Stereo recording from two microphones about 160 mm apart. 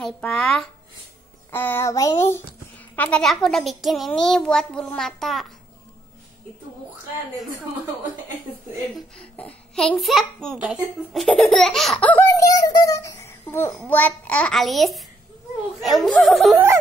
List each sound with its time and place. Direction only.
0.0 s a child's voice: 5° left (ahead or behind)
1.5 s speech: 15° left (ahead or behind)
3.0 s a child's voice: 5° left (ahead or behind)
8.9 s a child's voice: 5° left (ahead or behind)
12.4 s a sound: 20° left (ahead or behind)
13.8 s a child's voice: 10° left (ahead or behind)
16.5 s snicker: 15° right (ahead or behind)